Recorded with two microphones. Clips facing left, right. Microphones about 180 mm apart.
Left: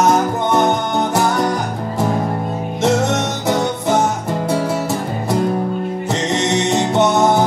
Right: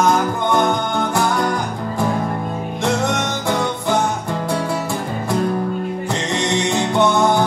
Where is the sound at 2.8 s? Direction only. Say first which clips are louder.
Left 4 dB; 20° left (ahead or behind).